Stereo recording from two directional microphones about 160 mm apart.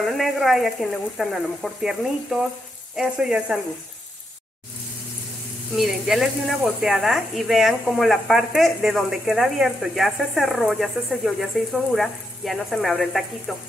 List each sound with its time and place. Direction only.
0.0 s speech: centre (ahead or behind)
3.0 s speech: 5° right (ahead or behind)
5.8 s speech: centre (ahead or behind)